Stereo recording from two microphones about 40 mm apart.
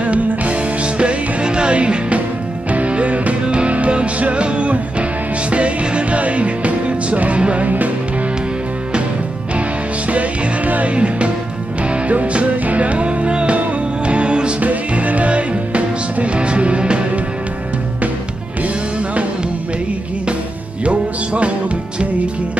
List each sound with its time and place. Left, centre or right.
0.0 s music: right
10.1 s music: right
14.6 s music: right
20.8 s music: right